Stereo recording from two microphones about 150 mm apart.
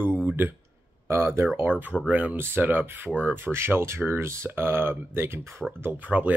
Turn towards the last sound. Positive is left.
turn(degrees=-10)  # may be behind; listen again after turning